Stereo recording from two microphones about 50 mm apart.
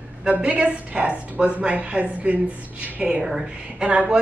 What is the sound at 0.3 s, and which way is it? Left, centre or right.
A woman's voice, right.